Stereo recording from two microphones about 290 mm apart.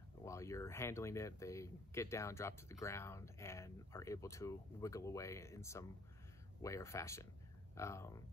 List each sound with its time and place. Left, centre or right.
0.2 s speech: centre